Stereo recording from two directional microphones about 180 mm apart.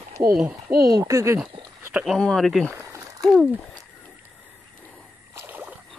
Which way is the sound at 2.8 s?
15° right (ahead or behind).